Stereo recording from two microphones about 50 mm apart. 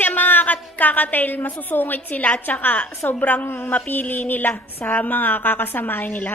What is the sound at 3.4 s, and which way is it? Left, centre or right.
Speech, left.